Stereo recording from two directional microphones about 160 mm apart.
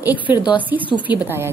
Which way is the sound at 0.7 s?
25° left (ahead or behind).